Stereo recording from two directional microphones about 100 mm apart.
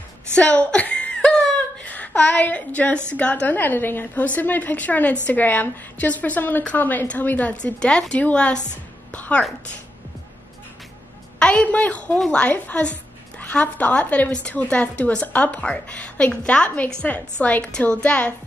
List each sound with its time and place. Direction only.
0.3 s a sound: 15° left (ahead or behind)
1.9 s a woman's voice: 15° left (ahead or behind)
9.1 s music: 15° left (ahead or behind)
11.3 s a woman's voice: 10° left (ahead or behind)